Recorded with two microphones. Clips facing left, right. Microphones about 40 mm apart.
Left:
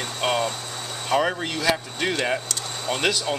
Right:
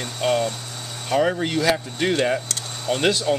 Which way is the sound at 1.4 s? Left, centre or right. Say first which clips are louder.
Right 3 dB; centre.